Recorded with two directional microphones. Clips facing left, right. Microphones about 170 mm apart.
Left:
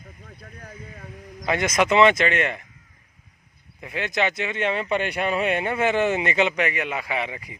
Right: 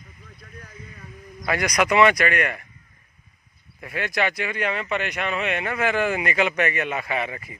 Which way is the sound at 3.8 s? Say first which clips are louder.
Even; 20° left (ahead or behind).